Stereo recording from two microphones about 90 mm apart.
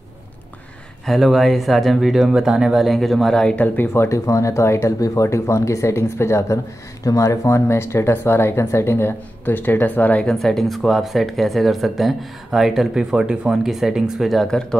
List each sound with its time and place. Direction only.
1.0 s speech: centre (ahead or behind)
3.5 s speech: 20° left (ahead or behind)
10.2 s speech: 5° left (ahead or behind)